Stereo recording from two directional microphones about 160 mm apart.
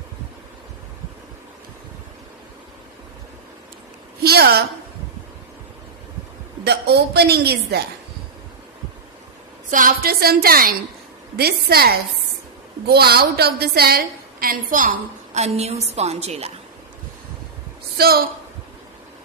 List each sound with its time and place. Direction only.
4.2 s a sound: 75° right (ahead or behind)
6.6 s a woman's voice: 90° right
9.7 s a woman's voice: 60° right (ahead or behind)
15.3 s a woman's voice: 45° right (ahead or behind)
17.9 s speech: 75° right (ahead or behind)